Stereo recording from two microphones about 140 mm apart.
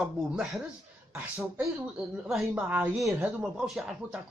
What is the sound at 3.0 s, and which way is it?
Speech, 20° right (ahead or behind).